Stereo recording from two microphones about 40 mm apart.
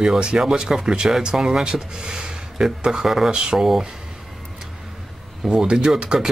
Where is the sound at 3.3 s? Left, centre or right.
Centre.